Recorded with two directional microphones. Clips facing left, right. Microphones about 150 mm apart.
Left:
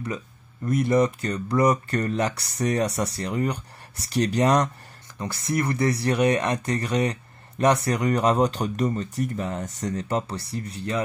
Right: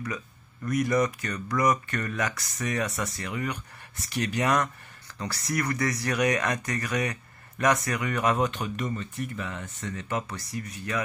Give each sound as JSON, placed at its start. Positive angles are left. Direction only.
{"t": 0.7, "sound": "speech", "side_deg": 30}
{"t": 5.2, "sound": "speech", "side_deg": 25}